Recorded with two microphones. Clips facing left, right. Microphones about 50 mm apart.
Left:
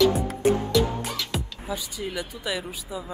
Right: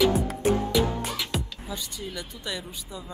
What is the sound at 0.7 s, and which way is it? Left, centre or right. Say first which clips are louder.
Music: left 1 dB; centre.